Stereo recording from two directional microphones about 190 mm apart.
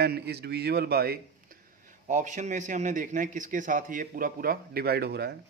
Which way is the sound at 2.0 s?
40° right (ahead or behind).